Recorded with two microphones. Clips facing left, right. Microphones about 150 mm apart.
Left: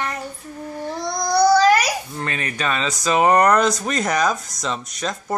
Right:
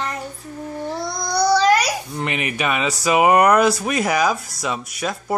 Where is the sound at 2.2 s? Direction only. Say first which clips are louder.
Right 3 dB; 15° right (ahead or behind).